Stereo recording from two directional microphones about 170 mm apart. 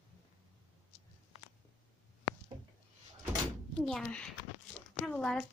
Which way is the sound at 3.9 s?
5° left (ahead or behind).